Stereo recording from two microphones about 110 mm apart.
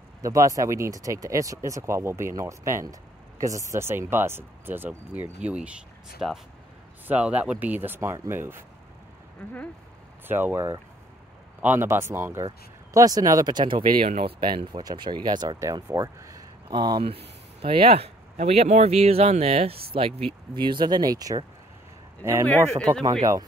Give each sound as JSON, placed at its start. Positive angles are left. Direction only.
{"t": 0.2, "sound": "speech", "side_deg": -30}
{"t": 10.2, "sound": "speech", "side_deg": -20}
{"t": 12.4, "sound": "speech", "side_deg": -35}
{"t": 15.6, "sound": "speech", "side_deg": -30}
{"t": 16.6, "sound": "speech", "side_deg": -45}
{"t": 17.0, "sound": "speech", "side_deg": -60}
{"t": 20.5, "sound": "speech", "side_deg": -45}